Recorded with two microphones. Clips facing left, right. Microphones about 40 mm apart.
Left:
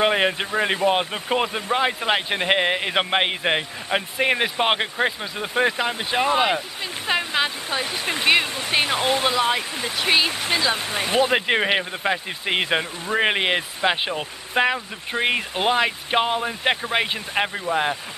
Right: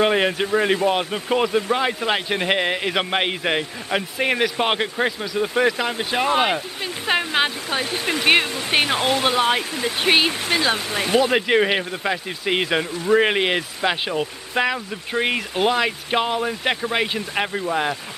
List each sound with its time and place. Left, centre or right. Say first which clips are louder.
0.0 s speech: right 1 dB; centre
7.1 s speech: right 2 dB; right
11.0 s speech: right 1 dB; centre